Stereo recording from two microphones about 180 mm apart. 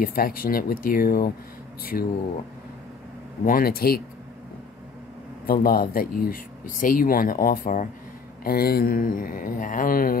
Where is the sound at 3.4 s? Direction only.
55° left (ahead or behind).